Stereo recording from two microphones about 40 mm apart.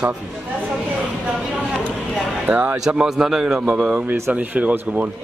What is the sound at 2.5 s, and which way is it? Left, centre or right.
Speech, right.